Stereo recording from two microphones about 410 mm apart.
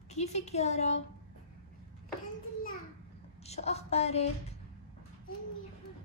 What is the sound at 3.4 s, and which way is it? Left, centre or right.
Speech, centre.